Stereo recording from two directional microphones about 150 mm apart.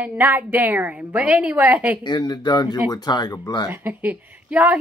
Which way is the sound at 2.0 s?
30° left (ahead or behind).